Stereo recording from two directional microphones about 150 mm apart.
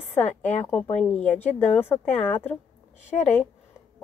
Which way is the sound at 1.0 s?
10° left (ahead or behind).